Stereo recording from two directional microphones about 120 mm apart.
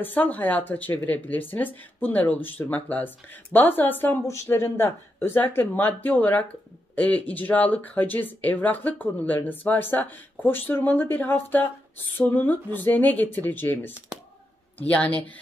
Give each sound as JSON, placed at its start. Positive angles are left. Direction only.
{"t": 0.0, "sound": "speech", "side_deg": 15}